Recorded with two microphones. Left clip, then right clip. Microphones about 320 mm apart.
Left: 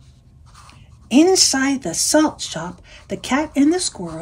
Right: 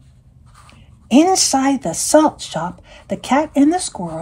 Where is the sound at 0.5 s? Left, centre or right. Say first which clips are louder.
Left 1 dB; centre.